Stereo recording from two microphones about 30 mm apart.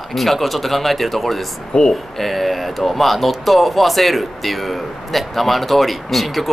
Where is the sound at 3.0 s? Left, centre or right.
Centre.